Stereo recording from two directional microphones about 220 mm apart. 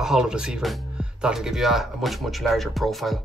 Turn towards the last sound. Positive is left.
turn(degrees=0)  # may be behind; listen again after turning